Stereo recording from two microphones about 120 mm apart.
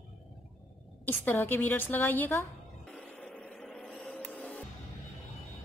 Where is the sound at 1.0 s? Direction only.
15° left (ahead or behind).